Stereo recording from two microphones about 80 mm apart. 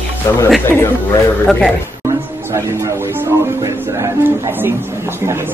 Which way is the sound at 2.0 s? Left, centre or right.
Right.